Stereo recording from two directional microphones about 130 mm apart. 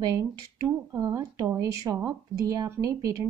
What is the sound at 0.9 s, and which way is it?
Speech, 25° right (ahead or behind).